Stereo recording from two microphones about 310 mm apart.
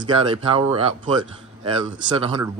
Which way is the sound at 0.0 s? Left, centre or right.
Centre.